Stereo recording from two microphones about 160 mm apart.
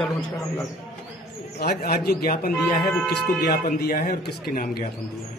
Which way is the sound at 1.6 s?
80° left.